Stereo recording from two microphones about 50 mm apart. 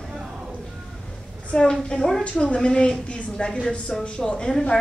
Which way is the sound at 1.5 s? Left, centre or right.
Centre.